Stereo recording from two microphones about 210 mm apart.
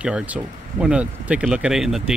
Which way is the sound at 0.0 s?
5° right (ahead or behind).